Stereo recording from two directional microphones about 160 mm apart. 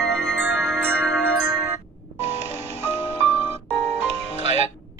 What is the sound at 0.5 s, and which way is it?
Music, 10° right (ahead or behind).